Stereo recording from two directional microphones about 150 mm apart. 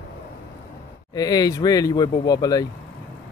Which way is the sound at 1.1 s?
25° left (ahead or behind).